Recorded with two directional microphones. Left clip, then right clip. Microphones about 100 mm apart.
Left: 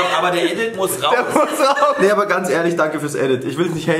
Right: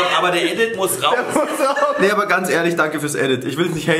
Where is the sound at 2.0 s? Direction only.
5° right (ahead or behind).